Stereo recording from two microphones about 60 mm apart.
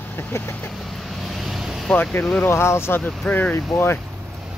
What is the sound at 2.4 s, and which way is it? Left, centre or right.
Speech, left.